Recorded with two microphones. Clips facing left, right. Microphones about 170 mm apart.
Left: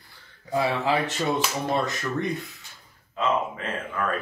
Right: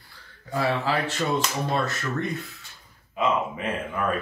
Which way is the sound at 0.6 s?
20° left (ahead or behind).